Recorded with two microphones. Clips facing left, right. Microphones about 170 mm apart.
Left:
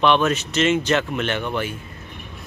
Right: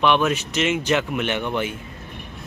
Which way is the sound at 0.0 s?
10° right (ahead or behind).